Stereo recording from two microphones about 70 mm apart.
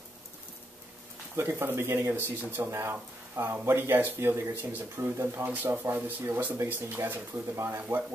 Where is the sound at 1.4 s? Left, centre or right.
Right.